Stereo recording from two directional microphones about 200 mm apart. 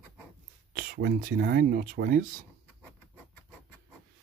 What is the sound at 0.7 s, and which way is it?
Speech, 50° right (ahead or behind).